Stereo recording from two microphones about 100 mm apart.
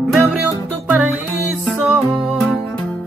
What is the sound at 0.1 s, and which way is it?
Music, centre (ahead or behind).